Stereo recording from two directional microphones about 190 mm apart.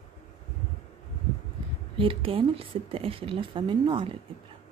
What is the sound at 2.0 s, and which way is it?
A woman's voice, 30° right (ahead or behind).